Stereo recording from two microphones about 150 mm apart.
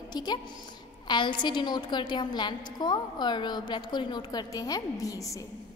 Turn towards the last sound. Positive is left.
turn(degrees=25)  # may be behind; listen again after turning